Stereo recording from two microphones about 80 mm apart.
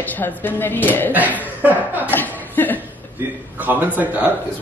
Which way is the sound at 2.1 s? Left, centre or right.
Left.